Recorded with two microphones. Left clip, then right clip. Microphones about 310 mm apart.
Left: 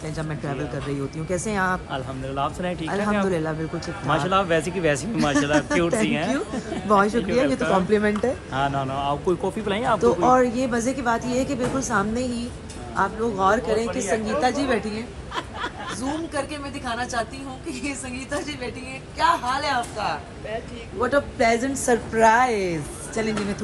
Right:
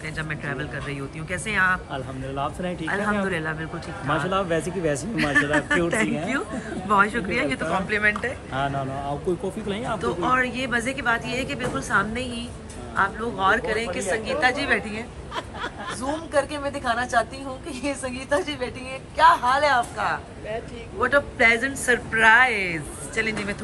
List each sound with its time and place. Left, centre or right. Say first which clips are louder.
0.2 s speech: even; centre
9.4 s speech: left 4 dB; left
9.9 s a woman's voice: left 5 dB; centre